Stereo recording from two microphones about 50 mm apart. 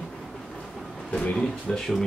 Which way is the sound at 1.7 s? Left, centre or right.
Centre.